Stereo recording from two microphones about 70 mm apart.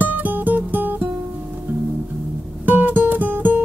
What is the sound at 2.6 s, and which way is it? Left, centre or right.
Music, right.